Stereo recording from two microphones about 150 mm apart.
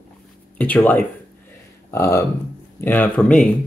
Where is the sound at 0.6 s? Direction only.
10° left (ahead or behind).